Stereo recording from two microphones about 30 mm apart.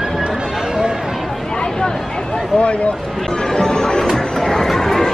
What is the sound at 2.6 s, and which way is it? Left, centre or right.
Speech, left.